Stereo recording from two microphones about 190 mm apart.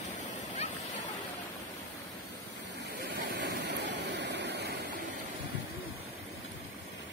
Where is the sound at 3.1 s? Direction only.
65° right (ahead or behind).